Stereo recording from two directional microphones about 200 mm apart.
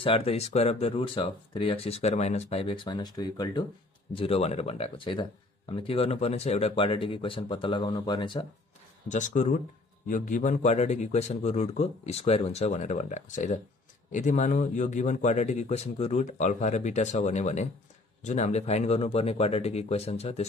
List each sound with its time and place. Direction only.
0.0 s speech: 30° left (ahead or behind)
9.1 s a man's voice: 35° left (ahead or behind)